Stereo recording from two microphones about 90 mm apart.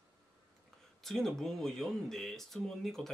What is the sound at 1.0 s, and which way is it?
Speech, 5° left (ahead or behind).